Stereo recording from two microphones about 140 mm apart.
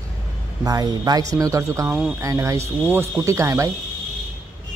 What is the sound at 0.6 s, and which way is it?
Speech, 25° right (ahead or behind).